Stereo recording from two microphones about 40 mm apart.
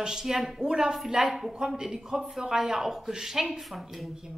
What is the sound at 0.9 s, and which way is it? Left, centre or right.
A woman's voice, centre.